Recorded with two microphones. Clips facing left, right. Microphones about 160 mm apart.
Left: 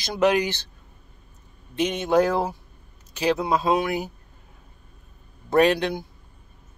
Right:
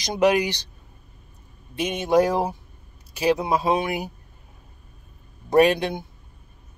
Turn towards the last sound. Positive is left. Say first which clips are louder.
# right 1 dB
turn(degrees=-15)  # may be behind; listen again after turning